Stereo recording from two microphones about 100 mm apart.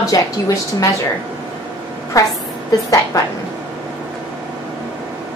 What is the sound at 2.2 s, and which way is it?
Speech, 35° left (ahead or behind).